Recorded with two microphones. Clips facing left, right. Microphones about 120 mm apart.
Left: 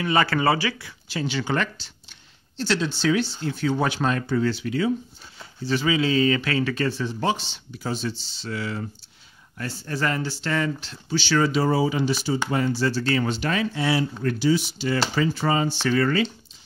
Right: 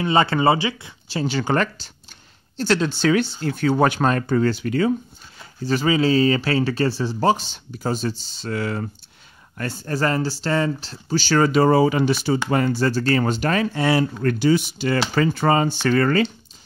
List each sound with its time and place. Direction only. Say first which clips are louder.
0.0 s speech: right 3 dB; 25° right (ahead or behind); by 16.3 s 50° right (ahead or behind)